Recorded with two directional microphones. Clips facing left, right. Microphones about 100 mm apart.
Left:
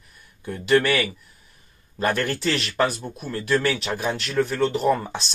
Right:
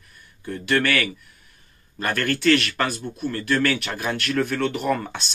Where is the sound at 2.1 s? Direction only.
20° left (ahead or behind).